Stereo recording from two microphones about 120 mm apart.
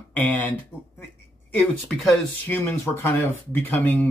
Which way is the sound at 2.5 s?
20° left (ahead or behind).